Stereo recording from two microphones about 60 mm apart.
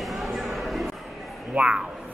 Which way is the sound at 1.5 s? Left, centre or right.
Centre.